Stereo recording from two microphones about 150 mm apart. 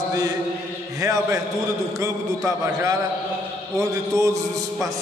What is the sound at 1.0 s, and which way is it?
Speech, 20° right (ahead or behind).